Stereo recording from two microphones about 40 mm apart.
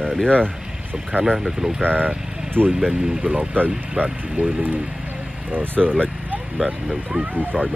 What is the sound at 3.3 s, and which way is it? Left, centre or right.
Speech, right.